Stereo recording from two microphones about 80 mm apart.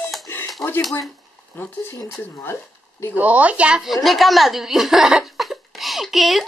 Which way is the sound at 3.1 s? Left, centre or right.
Centre.